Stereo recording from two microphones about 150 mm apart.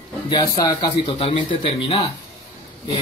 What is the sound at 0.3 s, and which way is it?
Speech, 30° left (ahead or behind).